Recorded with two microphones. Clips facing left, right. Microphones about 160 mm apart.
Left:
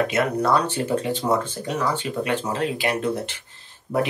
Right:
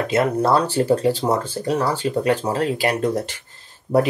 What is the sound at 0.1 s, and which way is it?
Speech, 30° right (ahead or behind).